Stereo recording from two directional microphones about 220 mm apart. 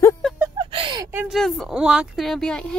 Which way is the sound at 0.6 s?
25° right (ahead or behind).